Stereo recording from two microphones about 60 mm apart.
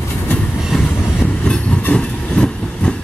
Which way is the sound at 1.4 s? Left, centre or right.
Centre.